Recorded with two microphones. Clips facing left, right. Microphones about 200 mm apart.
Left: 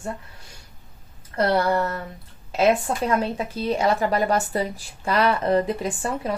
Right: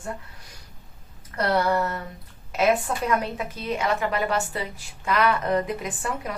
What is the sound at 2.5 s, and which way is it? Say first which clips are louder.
A woman's voice: left 2 dB; 30° left (ahead or behind).